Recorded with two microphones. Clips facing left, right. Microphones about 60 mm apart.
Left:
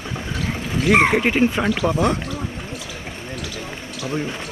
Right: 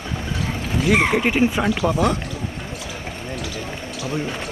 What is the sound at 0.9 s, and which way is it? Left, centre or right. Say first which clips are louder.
Speech: left 3 dB; left.